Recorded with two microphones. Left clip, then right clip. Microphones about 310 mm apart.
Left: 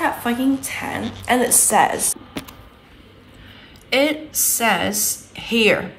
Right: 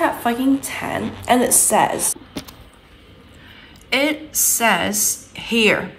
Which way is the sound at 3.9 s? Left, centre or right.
Centre.